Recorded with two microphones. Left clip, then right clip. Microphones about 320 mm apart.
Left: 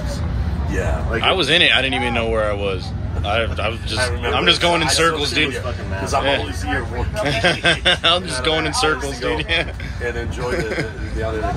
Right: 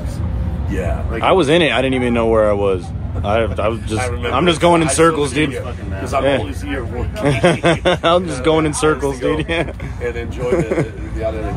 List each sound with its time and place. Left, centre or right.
1.2 s speech: centre
7.2 s speech: centre